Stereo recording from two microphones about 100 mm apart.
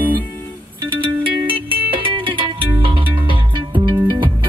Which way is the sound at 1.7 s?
60° right (ahead or behind).